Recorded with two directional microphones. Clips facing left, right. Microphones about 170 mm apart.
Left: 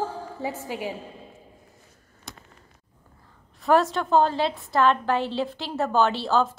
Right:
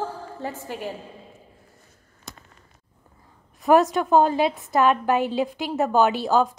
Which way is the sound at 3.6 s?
20° right (ahead or behind).